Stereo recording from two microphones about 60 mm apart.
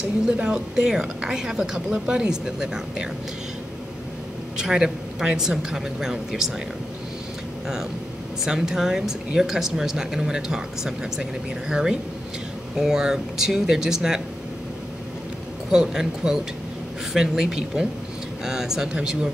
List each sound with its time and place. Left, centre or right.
0.0 s speech: centre
4.6 s speech: centre
8.5 s speech: centre
15.7 s speech: centre